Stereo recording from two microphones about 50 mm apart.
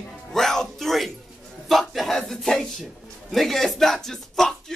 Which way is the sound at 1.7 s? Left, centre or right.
Centre.